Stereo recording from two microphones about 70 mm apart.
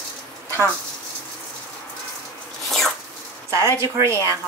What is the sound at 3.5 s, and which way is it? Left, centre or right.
Speech, right.